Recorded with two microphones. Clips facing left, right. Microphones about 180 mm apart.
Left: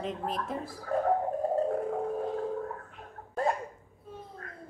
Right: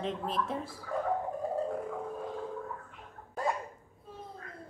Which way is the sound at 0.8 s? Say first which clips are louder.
Left 6 dB; 45° left (ahead or behind).